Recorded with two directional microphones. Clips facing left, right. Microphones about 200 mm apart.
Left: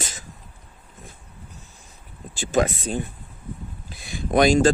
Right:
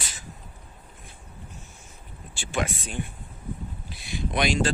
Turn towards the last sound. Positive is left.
turn(degrees=45)  # may be behind; listen again after turning